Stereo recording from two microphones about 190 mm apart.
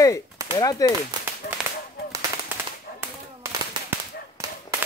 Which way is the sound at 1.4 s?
55° left (ahead or behind).